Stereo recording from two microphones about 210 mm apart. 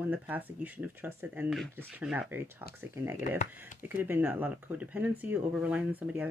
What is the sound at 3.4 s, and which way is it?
Speech, 35° left (ahead or behind).